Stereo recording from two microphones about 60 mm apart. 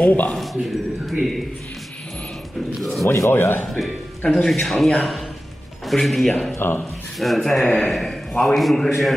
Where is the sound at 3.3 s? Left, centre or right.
Left.